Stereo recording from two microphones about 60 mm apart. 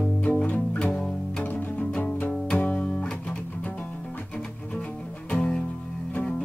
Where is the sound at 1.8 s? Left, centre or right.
Centre.